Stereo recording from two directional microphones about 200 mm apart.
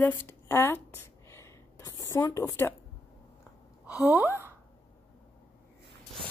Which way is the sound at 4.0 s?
5° right (ahead or behind).